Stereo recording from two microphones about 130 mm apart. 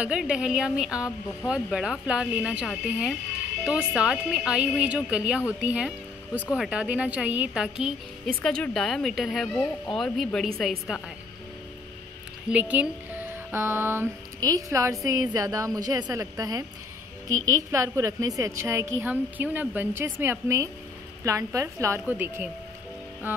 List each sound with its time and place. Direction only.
0.0 s speech: 5° right (ahead or behind)
8.4 s speech: 10° left (ahead or behind)
12.4 s a woman's voice: 10° right (ahead or behind)